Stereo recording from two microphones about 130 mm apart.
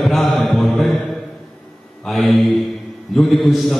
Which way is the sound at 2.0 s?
Centre (ahead or behind).